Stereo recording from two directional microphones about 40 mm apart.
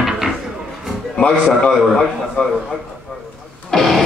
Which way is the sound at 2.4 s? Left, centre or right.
Left.